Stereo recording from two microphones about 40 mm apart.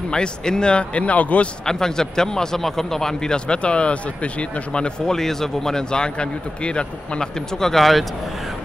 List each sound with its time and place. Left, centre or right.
0.1 s speech: left
1.7 s speech: centre
5.0 s speech: centre